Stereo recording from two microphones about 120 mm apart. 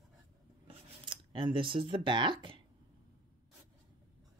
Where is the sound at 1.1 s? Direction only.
45° right (ahead or behind).